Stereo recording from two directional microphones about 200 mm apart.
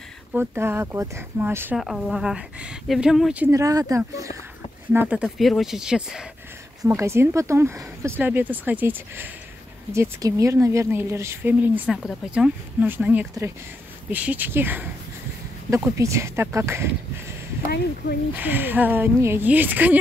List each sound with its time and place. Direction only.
0.3 s a woman's voice: 10° right (ahead or behind)
3.5 s a woman's voice: 15° right (ahead or behind)
18.3 s speech: 10° right (ahead or behind)